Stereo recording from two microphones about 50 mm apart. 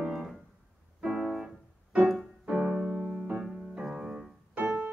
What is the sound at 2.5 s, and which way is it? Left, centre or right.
Keyboard, right.